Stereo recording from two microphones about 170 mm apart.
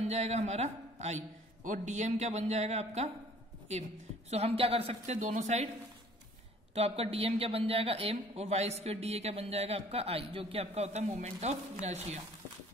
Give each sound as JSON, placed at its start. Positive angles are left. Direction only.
{"t": 0.0, "sound": "speech", "side_deg": -40}
{"t": 4.3, "sound": "speech", "side_deg": -40}
{"t": 6.7, "sound": "speech", "side_deg": -35}